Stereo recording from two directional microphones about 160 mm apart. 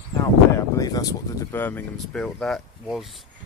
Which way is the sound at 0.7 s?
25° left (ahead or behind).